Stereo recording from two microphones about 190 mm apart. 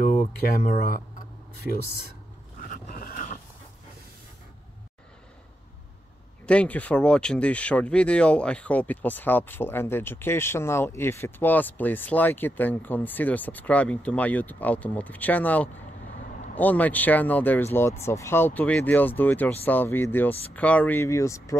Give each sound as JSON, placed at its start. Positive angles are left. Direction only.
{"t": 0.6, "sound": "speech", "side_deg": 45}
{"t": 1.6, "sound": "speech", "side_deg": 0}
{"t": 2.6, "sound": "a sound", "side_deg": 45}
{"t": 6.4, "sound": "speech", "side_deg": 5}